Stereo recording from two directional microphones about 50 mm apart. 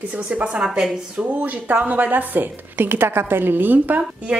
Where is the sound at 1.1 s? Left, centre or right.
Right.